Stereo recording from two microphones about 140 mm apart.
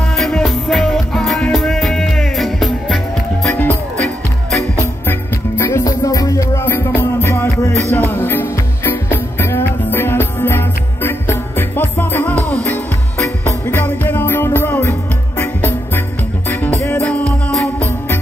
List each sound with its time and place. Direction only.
0.2 s music: centre (ahead or behind)
3.4 s music: 10° left (ahead or behind)
5.6 s music: 20° left (ahead or behind)